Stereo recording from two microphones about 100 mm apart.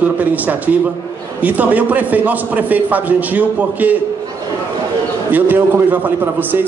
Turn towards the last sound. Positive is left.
turn(degrees=-20)  # may be behind; listen again after turning